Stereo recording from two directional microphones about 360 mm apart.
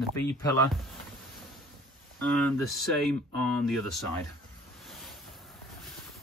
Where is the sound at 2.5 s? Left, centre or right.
Centre.